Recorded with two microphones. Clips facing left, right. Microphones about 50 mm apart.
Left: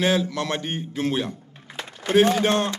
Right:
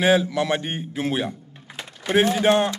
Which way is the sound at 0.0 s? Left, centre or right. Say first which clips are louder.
Right 3 dB; centre.